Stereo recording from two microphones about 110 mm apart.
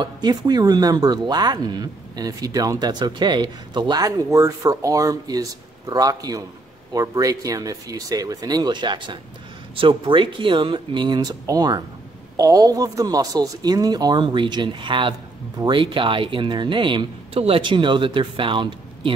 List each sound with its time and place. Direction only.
0.0 s speech: 40° right (ahead or behind)